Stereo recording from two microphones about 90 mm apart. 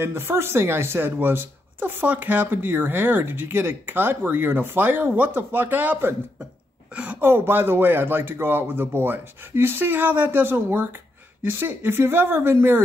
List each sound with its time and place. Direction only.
0.0 s speech: 25° right (ahead or behind)